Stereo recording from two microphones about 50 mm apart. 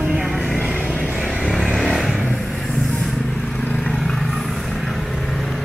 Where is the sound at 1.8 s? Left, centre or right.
Centre.